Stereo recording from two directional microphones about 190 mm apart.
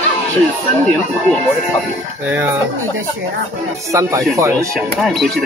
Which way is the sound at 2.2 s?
10° right (ahead or behind).